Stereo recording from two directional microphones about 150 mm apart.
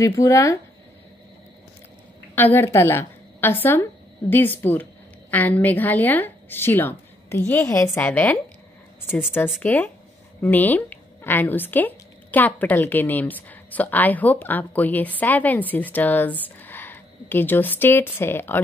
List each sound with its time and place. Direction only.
0.0 s speech: 20° left (ahead or behind)
2.3 s a woman's voice: 15° left (ahead or behind)
9.6 s speech: 10° left (ahead or behind)